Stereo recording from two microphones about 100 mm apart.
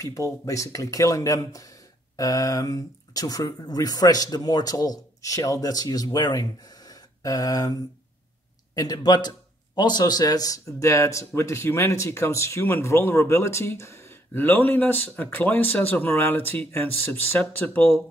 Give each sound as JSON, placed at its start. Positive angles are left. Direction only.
{"t": 0.0, "sound": "speech", "side_deg": 35}
{"t": 8.7, "sound": "speech", "side_deg": 40}